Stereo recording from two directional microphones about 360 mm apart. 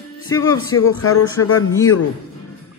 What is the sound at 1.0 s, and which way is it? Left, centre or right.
Speech, left.